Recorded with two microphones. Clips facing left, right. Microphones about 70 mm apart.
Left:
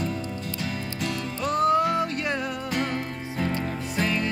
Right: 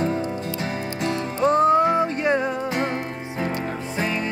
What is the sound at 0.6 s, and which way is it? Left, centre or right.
Music, right.